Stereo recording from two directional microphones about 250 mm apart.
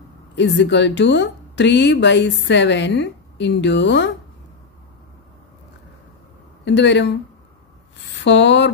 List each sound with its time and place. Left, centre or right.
0.4 s speech: left
6.6 s speech: left
8.2 s speech: left